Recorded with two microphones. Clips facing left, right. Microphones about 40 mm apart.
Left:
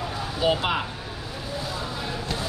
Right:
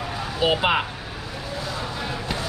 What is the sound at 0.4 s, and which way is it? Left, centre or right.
Speech, right.